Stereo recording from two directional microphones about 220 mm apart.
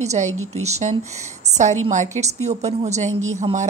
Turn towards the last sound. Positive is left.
turn(degrees=-30)  # may be behind; listen again after turning